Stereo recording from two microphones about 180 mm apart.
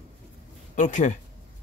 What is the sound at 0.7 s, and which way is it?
Speech, 45° left (ahead or behind).